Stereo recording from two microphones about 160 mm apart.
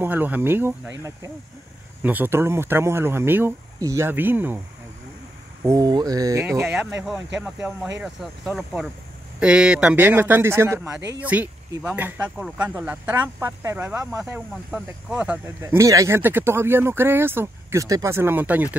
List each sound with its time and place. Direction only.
0.0 s speech: 10° right (ahead or behind)
5.6 s speech: 20° right (ahead or behind)
7.1 s speech: 5° right (ahead or behind)